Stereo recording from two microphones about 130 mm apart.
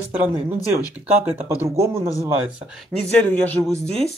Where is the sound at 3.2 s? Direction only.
15° left (ahead or behind).